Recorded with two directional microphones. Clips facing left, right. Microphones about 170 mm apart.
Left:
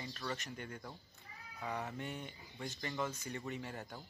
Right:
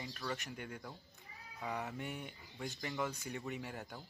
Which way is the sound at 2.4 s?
Centre (ahead or behind).